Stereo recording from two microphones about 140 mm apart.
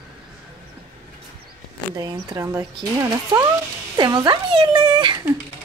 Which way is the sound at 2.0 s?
25° right (ahead or behind).